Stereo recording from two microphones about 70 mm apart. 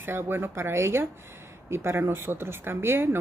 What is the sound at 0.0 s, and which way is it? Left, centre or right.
Speech, right.